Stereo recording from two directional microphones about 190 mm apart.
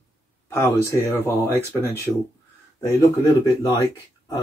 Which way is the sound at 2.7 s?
15° left (ahead or behind).